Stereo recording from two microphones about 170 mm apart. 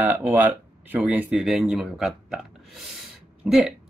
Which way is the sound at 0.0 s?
10° right (ahead or behind).